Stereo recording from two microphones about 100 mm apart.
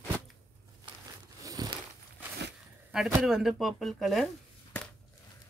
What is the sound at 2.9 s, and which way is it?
Speech, 5° right (ahead or behind).